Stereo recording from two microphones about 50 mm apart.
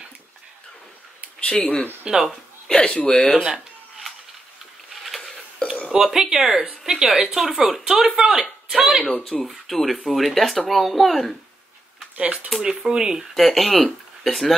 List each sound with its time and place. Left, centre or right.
1.4 s speech: left
2.0 s speech: centre
2.7 s speech: centre
5.0 s a sound: centre
5.6 s a sound: left
6.0 s speech: centre
9.0 s speech: left
9.5 s speech: centre
12.6 s speech: centre
13.3 s speech: centre